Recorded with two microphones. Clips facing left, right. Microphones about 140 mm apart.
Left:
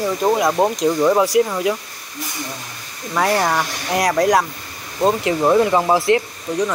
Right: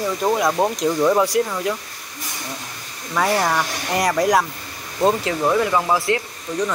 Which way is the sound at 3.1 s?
5° left (ahead or behind).